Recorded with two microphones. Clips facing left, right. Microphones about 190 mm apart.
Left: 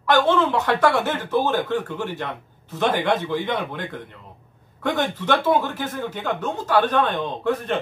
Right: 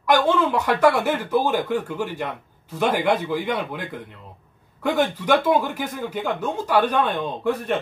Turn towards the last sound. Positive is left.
turn(degrees=-10)  # may be behind; listen again after turning